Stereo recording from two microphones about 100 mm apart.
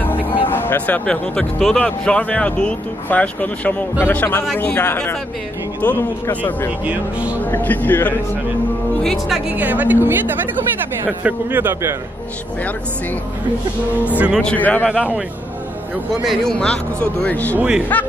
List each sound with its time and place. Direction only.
0.0 s music: 20° left (ahead or behind)
0.5 s speech: 20° left (ahead or behind)
6.8 s a man's voice: 15° right (ahead or behind)
7.5 s speech: 20° left (ahead or behind)
9.0 s speech: centre (ahead or behind)
9.5 s a man's voice: 15° right (ahead or behind)
14.0 s a man's voice: 15° right (ahead or behind)
14.4 s speech: 15° left (ahead or behind)
16.3 s speech: 5° left (ahead or behind)
17.6 s a man's voice: 10° right (ahead or behind)